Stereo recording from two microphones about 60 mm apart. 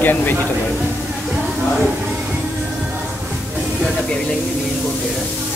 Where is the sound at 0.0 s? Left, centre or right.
Left.